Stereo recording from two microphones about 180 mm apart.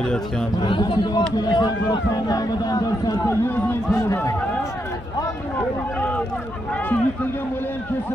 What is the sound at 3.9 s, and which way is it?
Run, 20° left (ahead or behind).